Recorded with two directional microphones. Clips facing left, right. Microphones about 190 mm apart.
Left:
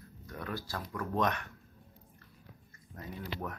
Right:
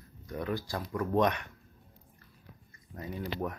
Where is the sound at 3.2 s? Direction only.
20° right (ahead or behind).